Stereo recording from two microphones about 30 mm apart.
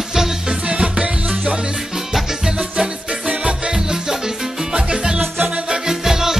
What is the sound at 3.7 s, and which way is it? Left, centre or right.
Music, centre.